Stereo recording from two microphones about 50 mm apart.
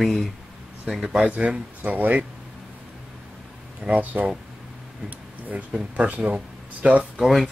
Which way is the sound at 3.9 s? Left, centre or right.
Right.